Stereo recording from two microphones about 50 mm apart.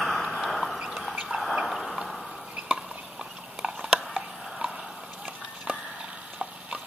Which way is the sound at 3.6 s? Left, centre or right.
Centre.